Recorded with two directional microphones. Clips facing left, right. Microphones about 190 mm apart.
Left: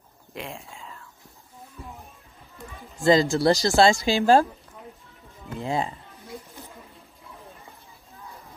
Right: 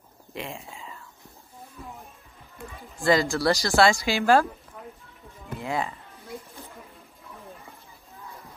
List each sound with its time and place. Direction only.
0.3 s a sound: centre (ahead or behind)
3.0 s speech: 20° left (ahead or behind)
5.6 s speech: 30° left (ahead or behind)